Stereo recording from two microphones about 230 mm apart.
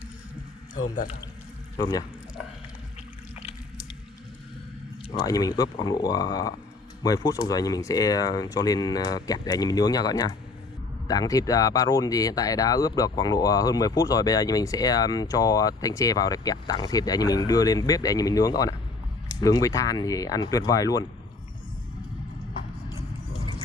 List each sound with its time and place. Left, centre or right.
1.8 s speech: centre
5.1 s speech: centre